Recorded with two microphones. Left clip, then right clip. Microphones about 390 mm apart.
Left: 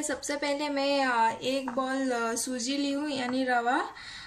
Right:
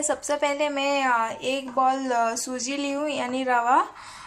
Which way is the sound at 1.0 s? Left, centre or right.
Centre.